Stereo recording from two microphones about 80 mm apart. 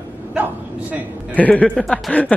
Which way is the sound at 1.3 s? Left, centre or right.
Centre.